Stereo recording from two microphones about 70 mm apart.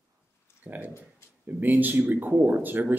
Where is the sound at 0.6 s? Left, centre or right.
Right.